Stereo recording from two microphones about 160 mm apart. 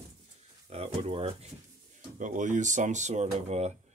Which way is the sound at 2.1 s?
50° right (ahead or behind).